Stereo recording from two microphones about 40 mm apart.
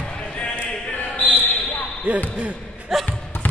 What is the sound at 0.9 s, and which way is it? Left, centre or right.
Basketball bounce, left.